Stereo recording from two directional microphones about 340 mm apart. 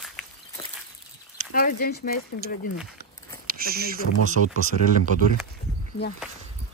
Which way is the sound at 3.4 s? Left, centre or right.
Right.